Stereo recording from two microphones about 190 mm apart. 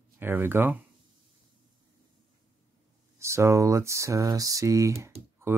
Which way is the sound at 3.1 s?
15° right (ahead or behind).